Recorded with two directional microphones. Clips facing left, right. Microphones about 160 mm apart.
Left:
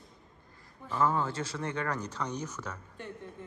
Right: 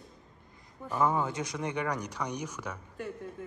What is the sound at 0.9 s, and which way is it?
Speech, 15° right (ahead or behind).